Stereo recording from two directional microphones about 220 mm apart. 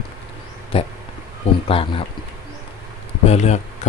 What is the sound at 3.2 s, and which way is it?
Speech, 30° left (ahead or behind).